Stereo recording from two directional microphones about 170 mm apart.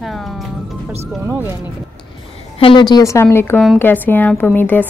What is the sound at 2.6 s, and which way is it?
A woman's voice, 30° left (ahead or behind).